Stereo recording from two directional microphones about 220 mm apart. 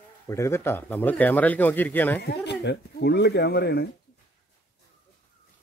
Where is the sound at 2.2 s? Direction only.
50° left (ahead or behind).